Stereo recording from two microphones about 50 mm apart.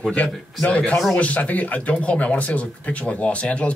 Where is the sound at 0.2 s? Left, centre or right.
Left.